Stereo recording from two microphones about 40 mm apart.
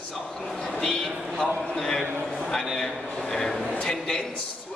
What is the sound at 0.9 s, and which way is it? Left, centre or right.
A man's voice, centre.